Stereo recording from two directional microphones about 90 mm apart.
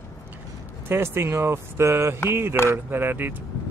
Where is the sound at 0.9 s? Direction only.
25° right (ahead or behind).